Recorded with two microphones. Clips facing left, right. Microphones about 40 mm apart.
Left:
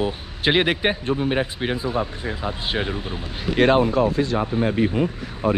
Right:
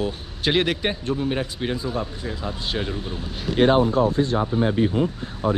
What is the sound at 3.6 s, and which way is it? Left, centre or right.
Speech, left.